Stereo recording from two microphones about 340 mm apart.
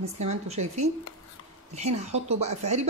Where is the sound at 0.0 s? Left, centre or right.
Centre.